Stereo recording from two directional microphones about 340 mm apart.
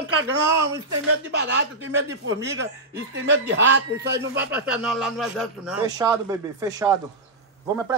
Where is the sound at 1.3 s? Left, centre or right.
Right.